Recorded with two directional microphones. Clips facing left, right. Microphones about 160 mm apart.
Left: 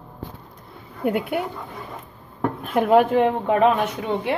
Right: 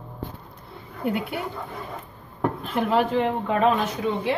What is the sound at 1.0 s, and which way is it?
Speech, 55° left (ahead or behind).